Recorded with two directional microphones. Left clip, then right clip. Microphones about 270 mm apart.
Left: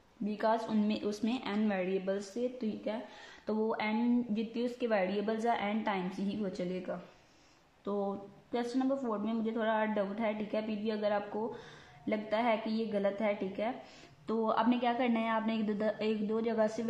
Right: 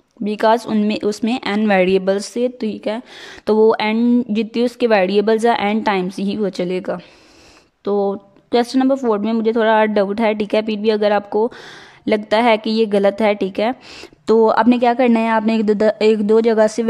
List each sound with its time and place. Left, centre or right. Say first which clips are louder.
0.2 s a woman's voice: right 17 dB; right
8.5 s a woman's voice: right 18 dB; right